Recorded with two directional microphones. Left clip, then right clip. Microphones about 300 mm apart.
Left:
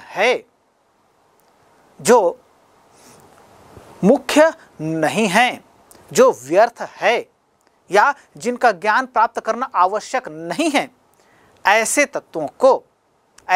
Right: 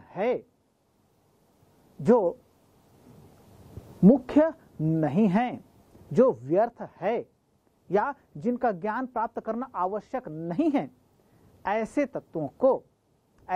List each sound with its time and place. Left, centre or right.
0.0 s speech: centre
2.0 s speech: centre
3.0 s a sound: centre
4.3 s a woman's voice: centre